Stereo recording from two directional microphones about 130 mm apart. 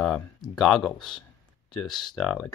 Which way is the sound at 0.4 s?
30° left (ahead or behind).